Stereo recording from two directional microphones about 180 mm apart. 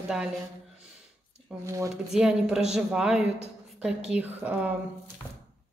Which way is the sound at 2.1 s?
5° right (ahead or behind).